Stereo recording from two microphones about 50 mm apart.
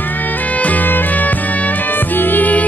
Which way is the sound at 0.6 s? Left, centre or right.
Left.